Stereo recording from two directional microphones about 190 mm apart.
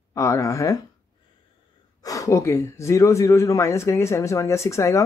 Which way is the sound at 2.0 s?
15° left (ahead or behind).